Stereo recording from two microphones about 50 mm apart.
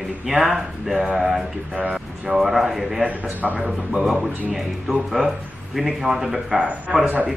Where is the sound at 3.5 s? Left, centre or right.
Right.